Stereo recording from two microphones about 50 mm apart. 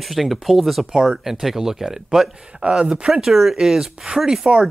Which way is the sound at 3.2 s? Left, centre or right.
Centre.